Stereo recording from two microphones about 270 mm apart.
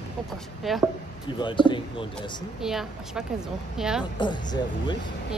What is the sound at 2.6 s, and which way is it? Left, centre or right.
A woman's voice, centre.